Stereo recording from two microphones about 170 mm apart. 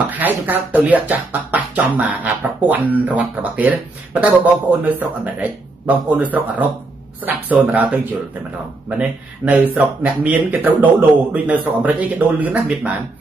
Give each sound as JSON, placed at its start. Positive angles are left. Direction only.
{"t": 0.1, "sound": "speech", "side_deg": -10}